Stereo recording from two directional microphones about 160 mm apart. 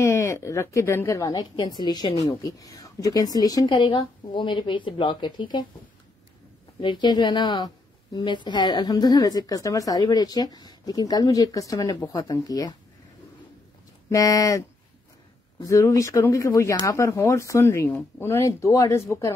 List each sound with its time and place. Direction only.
0.0 s a woman's voice: 20° left (ahead or behind)
6.8 s a woman's voice: 30° left (ahead or behind)
14.0 s a woman's voice: 20° left (ahead or behind)
15.6 s a woman's voice: 20° left (ahead or behind)